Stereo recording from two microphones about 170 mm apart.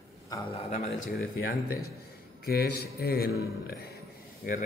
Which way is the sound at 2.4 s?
65° left (ahead or behind).